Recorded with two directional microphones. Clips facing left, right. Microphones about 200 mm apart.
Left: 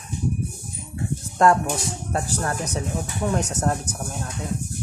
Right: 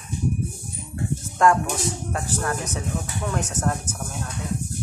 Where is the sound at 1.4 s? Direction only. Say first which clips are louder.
Left 1 dB; 35° left (ahead or behind).